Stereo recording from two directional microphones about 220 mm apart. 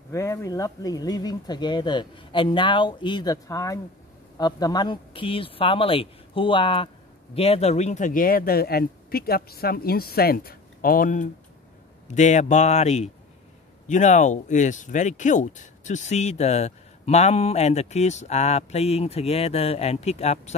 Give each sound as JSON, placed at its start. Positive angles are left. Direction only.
{"t": 0.1, "sound": "speech", "side_deg": 15}